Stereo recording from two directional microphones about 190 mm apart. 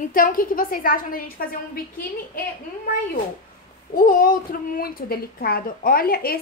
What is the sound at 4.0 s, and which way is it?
A woman's voice, 45° left (ahead or behind).